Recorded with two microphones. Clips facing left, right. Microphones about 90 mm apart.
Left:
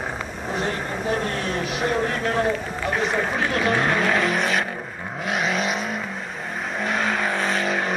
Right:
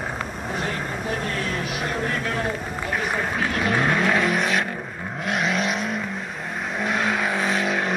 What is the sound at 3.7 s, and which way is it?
Vehicle, centre (ahead or behind).